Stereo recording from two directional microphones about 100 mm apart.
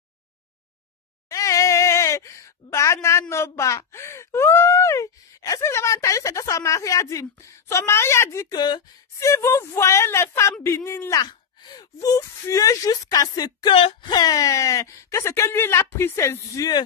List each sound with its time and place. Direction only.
1.3 s a sound: 30° left (ahead or behind)
8.5 s speech: 45° left (ahead or behind)
9.2 s a woman's voice: 30° left (ahead or behind)
13.7 s speech: 60° left (ahead or behind)
14.1 s speech: 40° left (ahead or behind)